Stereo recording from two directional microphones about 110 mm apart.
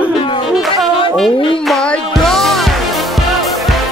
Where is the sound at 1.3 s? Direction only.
50° left (ahead or behind).